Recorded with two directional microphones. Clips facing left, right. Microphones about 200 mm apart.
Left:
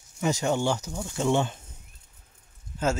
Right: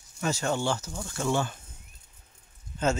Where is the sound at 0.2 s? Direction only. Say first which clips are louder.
Left 3 dB; 15° left (ahead or behind).